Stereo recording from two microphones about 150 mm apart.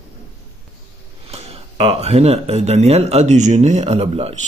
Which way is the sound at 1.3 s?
45° right (ahead or behind).